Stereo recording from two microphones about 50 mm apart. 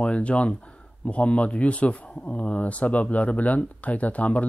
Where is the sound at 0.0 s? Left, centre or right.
Left.